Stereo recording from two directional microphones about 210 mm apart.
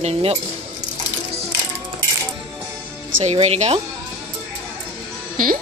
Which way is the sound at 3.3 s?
30° right (ahead or behind).